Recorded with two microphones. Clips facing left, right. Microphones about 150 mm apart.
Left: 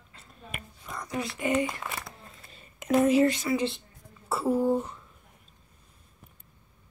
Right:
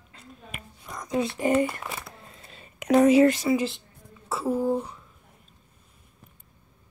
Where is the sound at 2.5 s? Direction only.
90° right.